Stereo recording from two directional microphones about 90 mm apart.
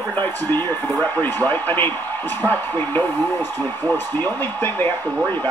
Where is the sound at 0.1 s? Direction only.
20° left (ahead or behind).